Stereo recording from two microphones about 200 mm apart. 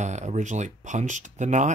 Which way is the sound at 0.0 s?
35° right (ahead or behind).